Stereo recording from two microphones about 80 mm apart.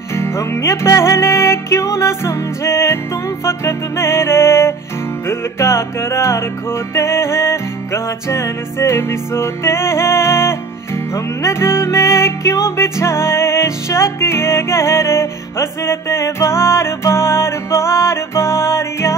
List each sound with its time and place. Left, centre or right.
0.1 s music: left